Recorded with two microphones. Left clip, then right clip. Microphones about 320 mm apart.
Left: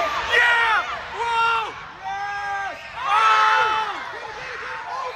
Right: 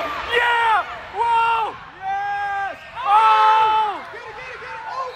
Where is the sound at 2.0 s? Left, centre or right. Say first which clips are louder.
Right 4 dB; right.